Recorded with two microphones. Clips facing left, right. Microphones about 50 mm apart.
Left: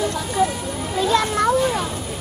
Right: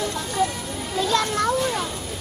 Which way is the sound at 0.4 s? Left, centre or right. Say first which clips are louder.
Left 4 dB; centre.